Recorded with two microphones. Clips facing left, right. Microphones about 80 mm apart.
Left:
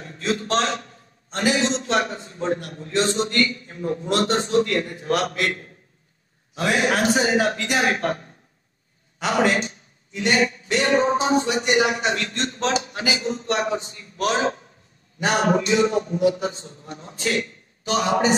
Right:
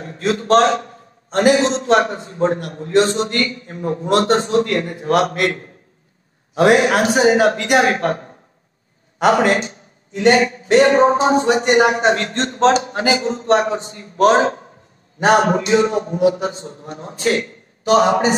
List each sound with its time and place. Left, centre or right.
0.2 s a sound: right
1.4 s a man's voice: right
6.5 s a man's voice: right
16.2 s a man's voice: right